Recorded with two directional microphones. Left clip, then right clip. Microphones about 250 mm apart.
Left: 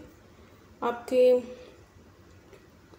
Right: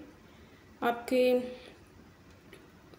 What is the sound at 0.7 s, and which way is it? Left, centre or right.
Speech, centre.